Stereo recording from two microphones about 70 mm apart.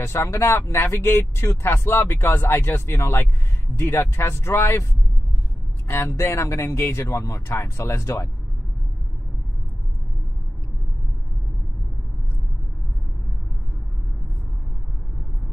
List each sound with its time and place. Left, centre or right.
0.0 s speech: left
0.7 s speech: left
5.9 s speech: left
7.1 s speech: left